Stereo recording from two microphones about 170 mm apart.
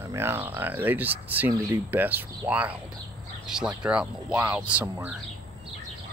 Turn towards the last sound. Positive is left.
turn(degrees=-10)  # may be behind; listen again after turning